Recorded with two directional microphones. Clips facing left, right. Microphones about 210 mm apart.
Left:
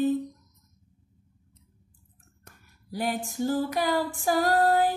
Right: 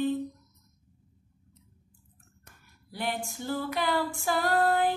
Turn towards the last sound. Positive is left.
turn(degrees=40)  # may be behind; listen again after turning